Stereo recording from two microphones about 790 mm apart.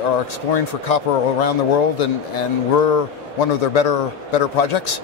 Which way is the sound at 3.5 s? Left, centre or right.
Left.